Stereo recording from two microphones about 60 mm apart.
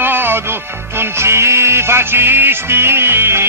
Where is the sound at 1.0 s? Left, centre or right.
Right.